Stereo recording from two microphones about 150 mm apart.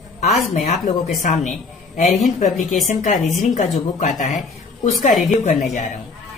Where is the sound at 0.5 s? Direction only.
60° left (ahead or behind).